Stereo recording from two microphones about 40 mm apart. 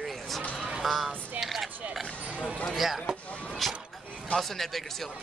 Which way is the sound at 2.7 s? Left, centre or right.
Centre.